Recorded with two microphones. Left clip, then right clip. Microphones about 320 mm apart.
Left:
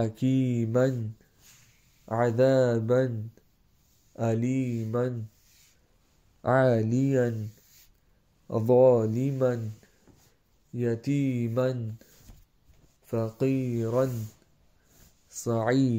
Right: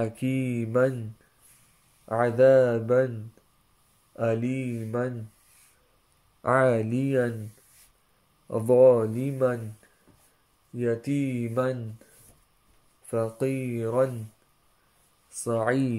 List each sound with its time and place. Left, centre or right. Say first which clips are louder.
0.0 s speech: left 1 dB; centre
2.0 s speech: right 4 dB; centre
4.1 s speech: right 2 dB; centre
6.4 s speech: right 1 dB; centre
8.5 s speech: right 2 dB; centre
10.8 s speech: right 2 dB; centre
13.0 s speech: right 1 dB; centre
15.2 s speech: right 1 dB; centre